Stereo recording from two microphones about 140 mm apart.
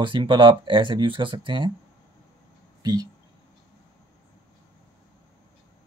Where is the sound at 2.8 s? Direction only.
30° right (ahead or behind).